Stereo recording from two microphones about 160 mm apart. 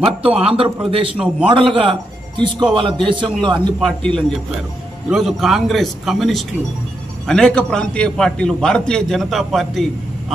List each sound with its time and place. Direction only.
0.2 s a man's voice: 35° right (ahead or behind)
1.1 s a man's voice: 10° right (ahead or behind)
1.5 s a man's voice: 35° right (ahead or behind)
3.8 s a man's voice: 5° left (ahead or behind)